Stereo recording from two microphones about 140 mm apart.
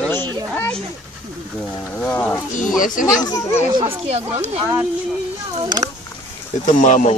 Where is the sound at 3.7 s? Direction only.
45° right (ahead or behind).